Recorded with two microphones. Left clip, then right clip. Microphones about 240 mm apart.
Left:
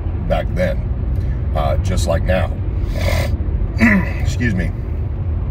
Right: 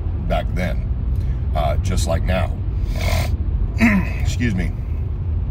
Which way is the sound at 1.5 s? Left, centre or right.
Centre.